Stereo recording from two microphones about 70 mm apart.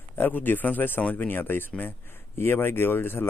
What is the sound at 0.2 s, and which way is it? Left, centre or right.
Speech, left.